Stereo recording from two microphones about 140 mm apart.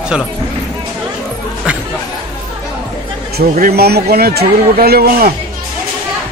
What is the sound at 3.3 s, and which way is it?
Speech, 90° right.